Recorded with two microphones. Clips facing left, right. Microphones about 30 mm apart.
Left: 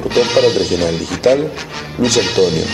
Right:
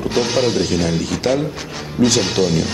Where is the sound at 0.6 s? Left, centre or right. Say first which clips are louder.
Left 2 dB; centre.